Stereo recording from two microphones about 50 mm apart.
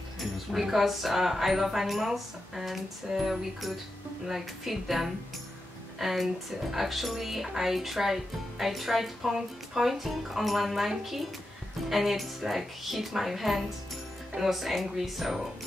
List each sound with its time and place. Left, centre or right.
0.2 s speech: centre